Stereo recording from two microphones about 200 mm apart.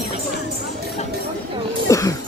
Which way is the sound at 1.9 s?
15° left (ahead or behind).